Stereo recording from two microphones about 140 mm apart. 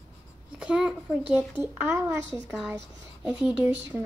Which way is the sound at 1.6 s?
20° right (ahead or behind).